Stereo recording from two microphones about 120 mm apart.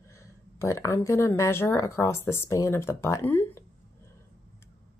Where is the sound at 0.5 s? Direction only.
25° left (ahead or behind).